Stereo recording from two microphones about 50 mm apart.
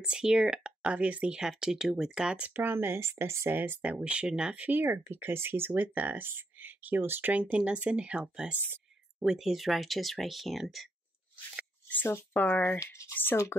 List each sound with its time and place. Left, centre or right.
0.0 s speech: centre
2.5 s speech: right
3.8 s speech: right
4.6 s speech: right
7.5 s speech: right
9.2 s speech: centre
12.4 s speech: left
12.7 s speech: left
13.1 s speech: left